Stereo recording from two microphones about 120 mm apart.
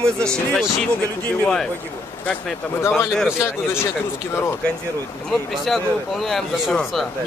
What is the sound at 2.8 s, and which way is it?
Speech, 20° left (ahead or behind).